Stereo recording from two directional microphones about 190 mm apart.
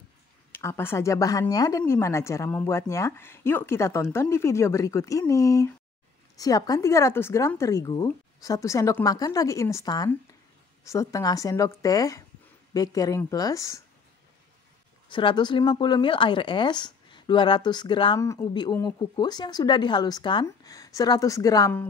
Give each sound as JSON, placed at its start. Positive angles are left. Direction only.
{"t": 0.5, "sound": "a woman's voice", "side_deg": 15}
{"t": 15.0, "sound": "speech", "side_deg": 25}